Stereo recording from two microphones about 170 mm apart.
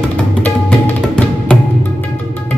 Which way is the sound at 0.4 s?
10° left (ahead or behind).